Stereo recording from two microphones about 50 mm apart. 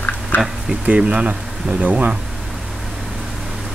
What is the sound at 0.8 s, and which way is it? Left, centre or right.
Speech, right.